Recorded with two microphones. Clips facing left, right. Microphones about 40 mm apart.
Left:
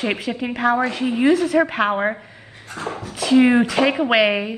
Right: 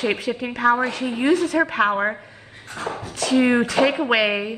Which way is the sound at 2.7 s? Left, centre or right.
Left.